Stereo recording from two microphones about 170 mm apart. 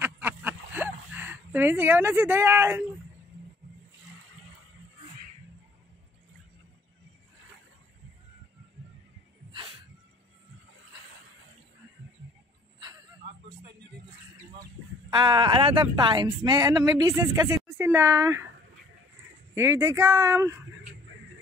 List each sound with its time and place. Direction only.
0.0 s a sound: 10° right (ahead or behind)
15.1 s speech: 25° right (ahead or behind)
19.5 s speech: 15° right (ahead or behind)